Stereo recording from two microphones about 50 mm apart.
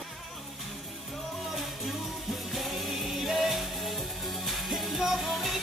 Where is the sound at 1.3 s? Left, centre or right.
Centre.